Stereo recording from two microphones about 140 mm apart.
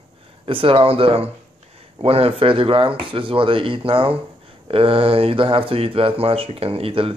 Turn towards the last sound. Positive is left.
turn(degrees=-40)  # may be behind; listen again after turning